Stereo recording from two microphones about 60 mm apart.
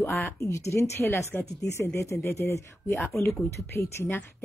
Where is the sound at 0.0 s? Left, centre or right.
Left.